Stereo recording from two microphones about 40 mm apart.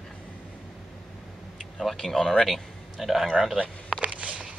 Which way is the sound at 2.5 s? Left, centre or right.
Centre.